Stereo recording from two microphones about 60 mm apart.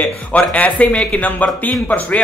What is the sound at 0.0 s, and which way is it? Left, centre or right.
Speech, left.